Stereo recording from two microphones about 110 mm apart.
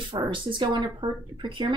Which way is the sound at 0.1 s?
45° right (ahead or behind).